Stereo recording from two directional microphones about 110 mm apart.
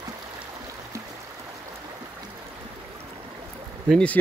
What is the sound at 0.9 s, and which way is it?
Music, 25° right (ahead or behind).